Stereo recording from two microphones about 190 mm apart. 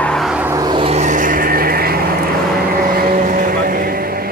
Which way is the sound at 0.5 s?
20° right (ahead or behind).